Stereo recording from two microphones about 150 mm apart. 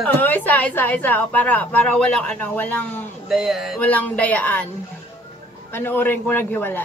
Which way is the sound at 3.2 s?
Centre (ahead or behind).